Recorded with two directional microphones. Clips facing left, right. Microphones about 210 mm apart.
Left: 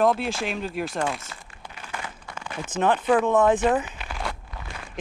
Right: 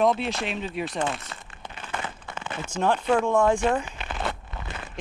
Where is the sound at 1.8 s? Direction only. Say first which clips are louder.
Right 3 dB; 25° right (ahead or behind).